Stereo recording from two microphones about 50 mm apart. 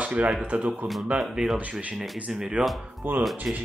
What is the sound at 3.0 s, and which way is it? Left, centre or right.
Speech, right.